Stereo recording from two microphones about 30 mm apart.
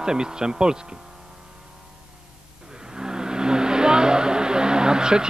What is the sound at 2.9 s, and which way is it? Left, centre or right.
Vehicle, right.